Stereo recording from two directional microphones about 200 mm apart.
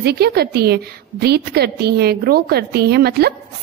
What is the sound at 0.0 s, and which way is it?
A woman's voice, 55° right (ahead or behind).